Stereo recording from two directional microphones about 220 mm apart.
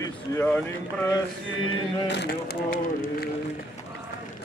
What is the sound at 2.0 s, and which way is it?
Speech, 50° left (ahead or behind).